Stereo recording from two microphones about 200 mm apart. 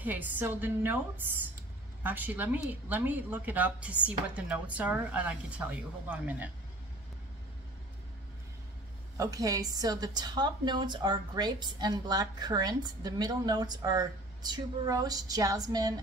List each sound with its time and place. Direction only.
0.0 s a woman's voice: 10° right (ahead or behind)
9.1 s a woman's voice: 15° right (ahead or behind)